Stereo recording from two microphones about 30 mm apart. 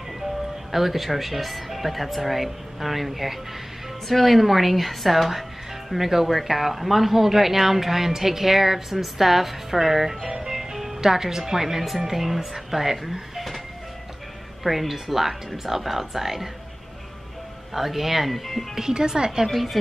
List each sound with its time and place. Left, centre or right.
0.7 s speech: centre
14.6 s speech: centre
17.7 s speech: centre
18.8 s speech: centre
19.4 s speech: centre